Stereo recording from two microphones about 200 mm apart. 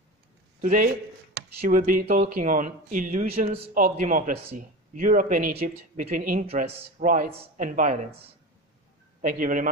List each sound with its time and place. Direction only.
0.6 s speech: 45° right (ahead or behind)
3.7 s speech: 40° right (ahead or behind)